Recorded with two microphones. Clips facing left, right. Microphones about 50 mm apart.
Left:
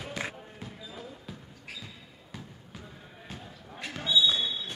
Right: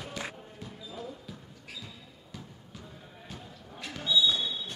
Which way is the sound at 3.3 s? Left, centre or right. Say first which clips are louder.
Left 2 dB; left.